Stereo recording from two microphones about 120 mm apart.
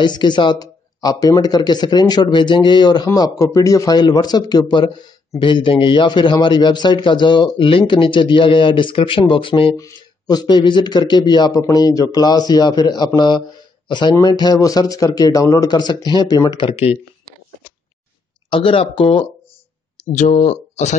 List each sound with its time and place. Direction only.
0.0 s speech: 40° left (ahead or behind)
9.8 s speech: 30° left (ahead or behind)
18.5 s speech: 50° left (ahead or behind)
20.3 s speech: 70° left (ahead or behind)